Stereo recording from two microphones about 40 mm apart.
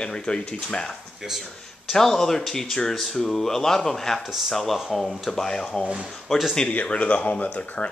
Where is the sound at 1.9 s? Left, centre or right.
Centre.